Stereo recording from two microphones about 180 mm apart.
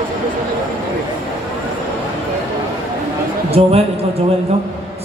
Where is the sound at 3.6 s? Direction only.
35° right (ahead or behind).